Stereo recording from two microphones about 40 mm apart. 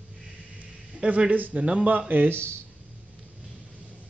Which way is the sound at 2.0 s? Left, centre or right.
Right.